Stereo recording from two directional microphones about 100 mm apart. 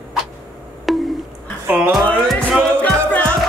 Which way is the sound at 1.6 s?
20° right (ahead or behind).